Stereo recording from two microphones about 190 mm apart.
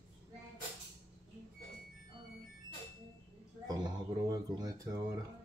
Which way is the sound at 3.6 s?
20° right (ahead or behind).